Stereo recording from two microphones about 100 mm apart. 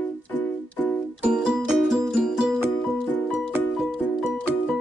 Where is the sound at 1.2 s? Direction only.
5° right (ahead or behind).